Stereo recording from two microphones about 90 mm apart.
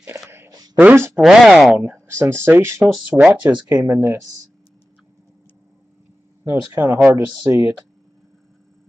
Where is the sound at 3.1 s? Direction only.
10° right (ahead or behind).